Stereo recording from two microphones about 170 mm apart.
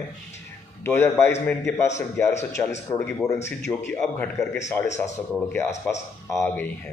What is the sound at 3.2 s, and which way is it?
A man's voice, 5° left (ahead or behind).